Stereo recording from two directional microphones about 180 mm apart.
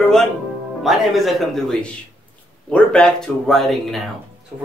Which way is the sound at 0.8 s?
Centre (ahead or behind).